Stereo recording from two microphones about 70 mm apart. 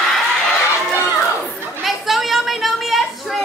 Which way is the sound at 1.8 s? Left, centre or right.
Centre.